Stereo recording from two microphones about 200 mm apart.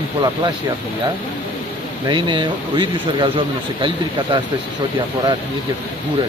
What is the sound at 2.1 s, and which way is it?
Speech, 25° right (ahead or behind).